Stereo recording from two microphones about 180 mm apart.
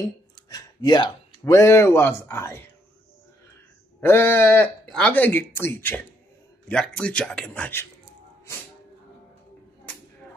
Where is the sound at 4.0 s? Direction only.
10° left (ahead or behind).